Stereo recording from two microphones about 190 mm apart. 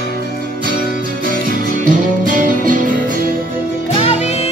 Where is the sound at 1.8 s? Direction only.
45° right (ahead or behind).